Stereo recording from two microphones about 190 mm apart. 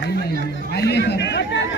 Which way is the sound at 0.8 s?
60° left (ahead or behind).